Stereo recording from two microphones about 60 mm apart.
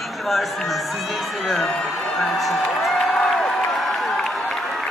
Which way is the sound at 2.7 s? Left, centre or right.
Centre.